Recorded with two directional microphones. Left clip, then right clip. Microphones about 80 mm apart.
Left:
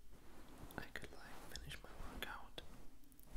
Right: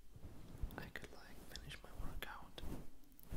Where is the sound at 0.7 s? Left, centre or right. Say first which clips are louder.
Left 1 dB; centre.